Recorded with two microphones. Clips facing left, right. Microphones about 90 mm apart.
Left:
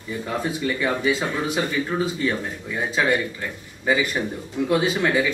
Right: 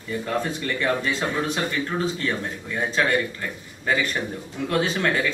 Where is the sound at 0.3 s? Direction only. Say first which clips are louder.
Left 2 dB; 5° left (ahead or behind).